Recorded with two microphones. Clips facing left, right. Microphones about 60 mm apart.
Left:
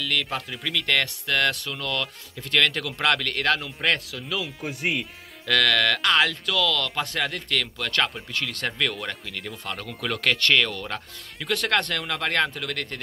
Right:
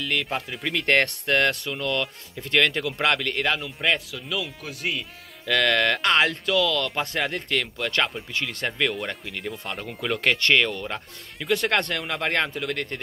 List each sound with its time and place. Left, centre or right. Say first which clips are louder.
0.1 s speech: right 2 dB; centre
0.7 s speech: right 4 dB; right
1.3 s speech: right 1 dB; right
3.5 s speech: even; centre
5.5 s speech: even; right; by 10.2 s centre
10.2 s speech: right 1 dB; right